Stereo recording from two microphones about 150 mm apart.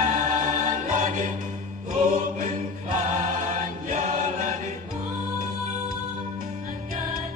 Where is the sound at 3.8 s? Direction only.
55° right (ahead or behind).